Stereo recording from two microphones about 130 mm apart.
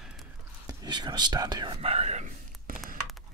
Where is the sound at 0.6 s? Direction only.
35° right (ahead or behind).